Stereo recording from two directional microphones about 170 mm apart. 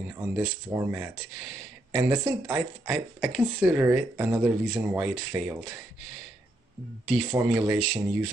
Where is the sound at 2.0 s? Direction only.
15° right (ahead or behind).